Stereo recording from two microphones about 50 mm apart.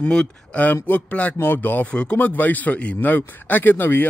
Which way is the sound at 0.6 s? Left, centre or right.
Left.